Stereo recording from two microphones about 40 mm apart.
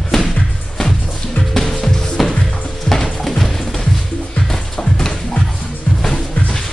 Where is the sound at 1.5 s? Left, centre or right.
Centre.